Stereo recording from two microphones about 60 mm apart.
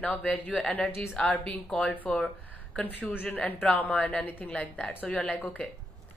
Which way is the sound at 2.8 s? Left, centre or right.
Left.